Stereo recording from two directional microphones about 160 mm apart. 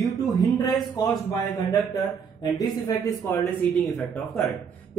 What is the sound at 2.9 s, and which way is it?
Speech, 20° left (ahead or behind).